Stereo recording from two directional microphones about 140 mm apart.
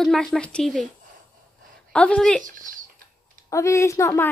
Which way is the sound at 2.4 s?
70° right (ahead or behind).